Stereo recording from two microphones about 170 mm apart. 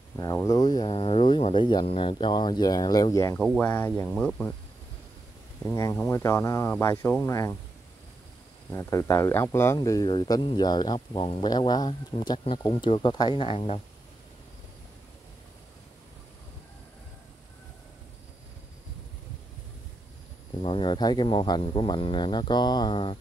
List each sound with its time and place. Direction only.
0.2 s speech: 20° left (ahead or behind)
3.3 s speech: 5° left (ahead or behind)
5.8 s speech: 15° left (ahead or behind)
8.6 s speech: 15° left (ahead or behind)
20.6 s speech: 30° left (ahead or behind)